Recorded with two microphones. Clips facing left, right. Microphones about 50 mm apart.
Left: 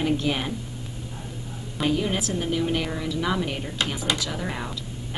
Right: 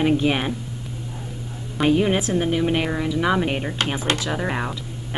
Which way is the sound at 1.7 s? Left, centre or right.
Right.